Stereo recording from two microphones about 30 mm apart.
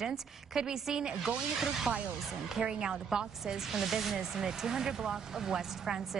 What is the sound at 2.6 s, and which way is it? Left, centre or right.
Speech, right.